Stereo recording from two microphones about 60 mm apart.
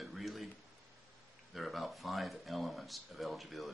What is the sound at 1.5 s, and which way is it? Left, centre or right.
Speech, centre.